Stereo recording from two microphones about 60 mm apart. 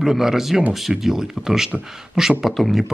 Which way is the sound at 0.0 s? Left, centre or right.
Centre.